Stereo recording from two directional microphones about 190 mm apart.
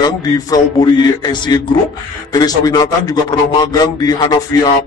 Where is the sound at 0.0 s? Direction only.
20° left (ahead or behind).